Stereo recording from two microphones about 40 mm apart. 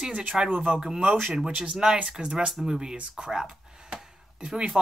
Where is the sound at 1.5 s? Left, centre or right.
Right.